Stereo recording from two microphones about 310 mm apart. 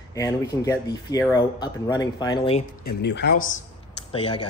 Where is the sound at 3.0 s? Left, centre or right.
Left.